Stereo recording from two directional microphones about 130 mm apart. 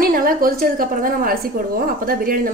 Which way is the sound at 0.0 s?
90° right.